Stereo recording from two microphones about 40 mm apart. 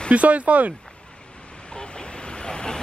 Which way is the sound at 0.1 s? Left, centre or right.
Right.